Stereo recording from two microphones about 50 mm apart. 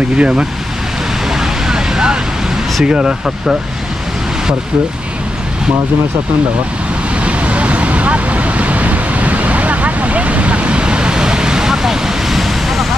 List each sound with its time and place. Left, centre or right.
0.2 s speech: right
1.7 s vehicle: centre
2.8 s speech: centre
7.2 s vehicle: right; by 12.8 s centre